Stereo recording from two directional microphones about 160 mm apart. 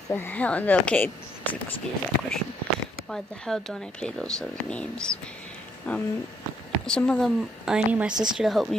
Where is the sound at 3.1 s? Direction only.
5° left (ahead or behind).